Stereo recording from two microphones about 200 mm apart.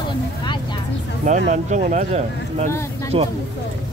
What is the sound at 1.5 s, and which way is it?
Speech, 40° right (ahead or behind).